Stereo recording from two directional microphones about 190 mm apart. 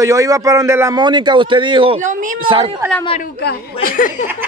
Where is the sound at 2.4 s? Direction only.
25° right (ahead or behind).